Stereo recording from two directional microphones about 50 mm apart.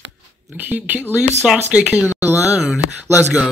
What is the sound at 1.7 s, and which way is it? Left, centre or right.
Speech, right.